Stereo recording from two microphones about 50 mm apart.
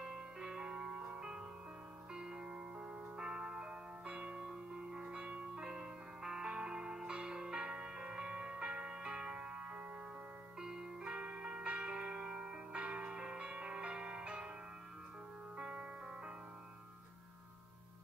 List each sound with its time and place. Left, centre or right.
0.0 s music: centre
10.6 s music: centre
15.5 s music: right